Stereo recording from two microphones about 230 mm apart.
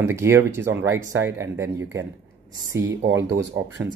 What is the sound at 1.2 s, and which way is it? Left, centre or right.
Speech, centre.